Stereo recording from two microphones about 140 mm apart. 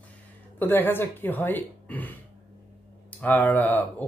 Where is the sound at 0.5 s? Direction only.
15° left (ahead or behind).